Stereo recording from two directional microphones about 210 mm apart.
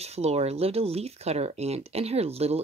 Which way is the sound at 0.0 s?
30° right (ahead or behind).